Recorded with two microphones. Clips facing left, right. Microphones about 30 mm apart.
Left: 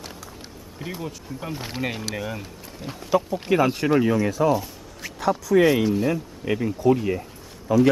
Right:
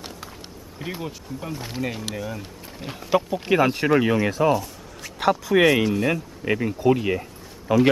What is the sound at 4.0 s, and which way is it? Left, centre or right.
Speech, right.